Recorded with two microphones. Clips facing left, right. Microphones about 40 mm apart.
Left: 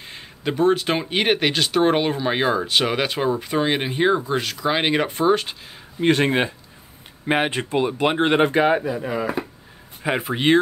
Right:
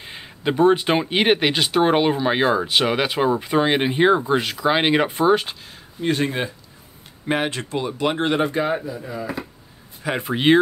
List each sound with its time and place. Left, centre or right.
0.0 s speech: centre
5.9 s speech: left
7.2 s speech: centre
8.3 s speech: left
10.2 s speech: centre